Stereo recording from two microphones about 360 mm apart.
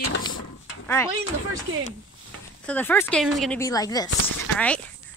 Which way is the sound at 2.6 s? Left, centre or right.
Centre.